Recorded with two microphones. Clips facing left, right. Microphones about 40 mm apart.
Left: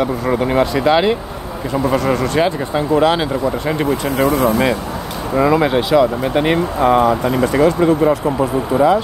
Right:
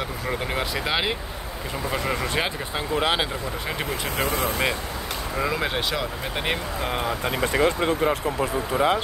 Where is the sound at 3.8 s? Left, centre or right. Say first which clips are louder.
Left 11 dB; left.